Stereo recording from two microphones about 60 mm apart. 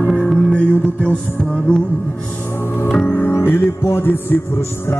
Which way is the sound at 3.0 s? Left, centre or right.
Left.